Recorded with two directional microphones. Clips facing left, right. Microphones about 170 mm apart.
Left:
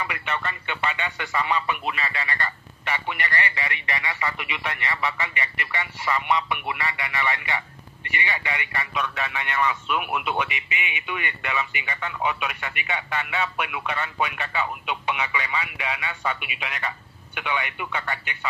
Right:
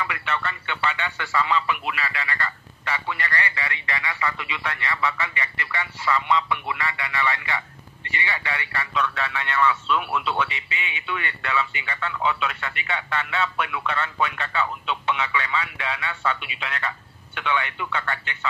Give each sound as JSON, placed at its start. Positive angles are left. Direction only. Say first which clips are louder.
{"t": 0.0, "sound": "a man's voice", "louder": "right 1 dB", "side_deg": 20}
{"t": 1.9, "sound": "a man's voice", "louder": "even", "side_deg": 30}